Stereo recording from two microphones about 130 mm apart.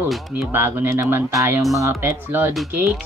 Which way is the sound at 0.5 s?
15° right (ahead or behind).